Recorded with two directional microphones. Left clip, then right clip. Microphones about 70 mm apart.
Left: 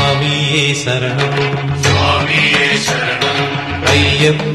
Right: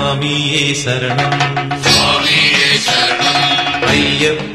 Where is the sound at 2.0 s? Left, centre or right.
Right.